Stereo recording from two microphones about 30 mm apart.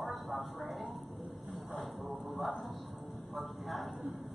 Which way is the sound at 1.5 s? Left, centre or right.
Centre.